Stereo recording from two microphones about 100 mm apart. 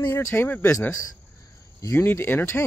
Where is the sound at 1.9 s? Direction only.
20° left (ahead or behind).